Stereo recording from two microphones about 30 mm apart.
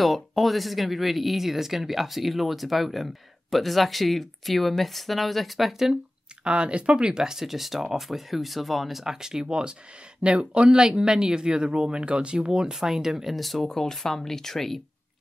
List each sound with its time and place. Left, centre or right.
0.0 s speech: centre
5.7 s speech: centre
6.4 s speech: right
7.3 s speech: centre
9.0 s speech: centre
12.7 s speech: centre
13.4 s speech: centre